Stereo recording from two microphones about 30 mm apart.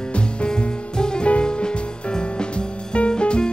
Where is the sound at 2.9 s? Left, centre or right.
Left.